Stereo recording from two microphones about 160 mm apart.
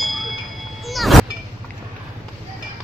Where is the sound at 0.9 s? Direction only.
Centre (ahead or behind).